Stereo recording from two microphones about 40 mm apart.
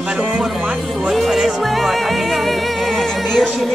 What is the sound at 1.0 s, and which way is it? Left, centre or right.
Music, centre.